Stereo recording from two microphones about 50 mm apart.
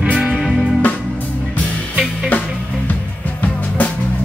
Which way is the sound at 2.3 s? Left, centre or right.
Left.